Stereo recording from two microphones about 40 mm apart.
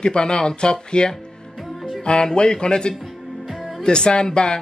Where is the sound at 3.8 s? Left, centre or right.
Left.